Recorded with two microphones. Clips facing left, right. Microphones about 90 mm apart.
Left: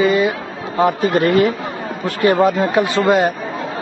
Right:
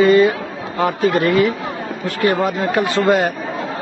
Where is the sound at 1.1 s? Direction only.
40° left (ahead or behind).